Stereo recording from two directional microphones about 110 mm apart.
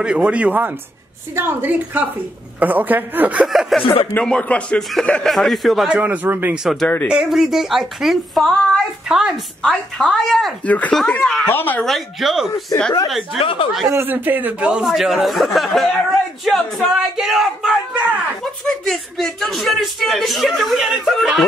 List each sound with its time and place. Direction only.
0.0 s a woman's voice: 10° right (ahead or behind)
3.4 s speech: centre (ahead or behind)
3.8 s speech: 60° left (ahead or behind)
4.2 s speech: 10° left (ahead or behind)
5.9 s speech: 15° right (ahead or behind)
6.6 s speech: centre (ahead or behind); by 11.8 s 15° left (ahead or behind)
11.8 s speech: centre (ahead or behind)
12.7 s speech: 30° left (ahead or behind)
13.4 s speech: 55° left (ahead or behind)
13.8 s speech: 20° right (ahead or behind); by 21.5 s centre (ahead or behind)